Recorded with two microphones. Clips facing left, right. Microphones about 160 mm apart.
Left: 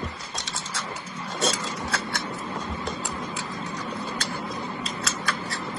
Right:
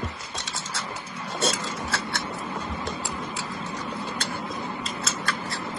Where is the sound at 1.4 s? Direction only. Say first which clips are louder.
Even; centre (ahead or behind).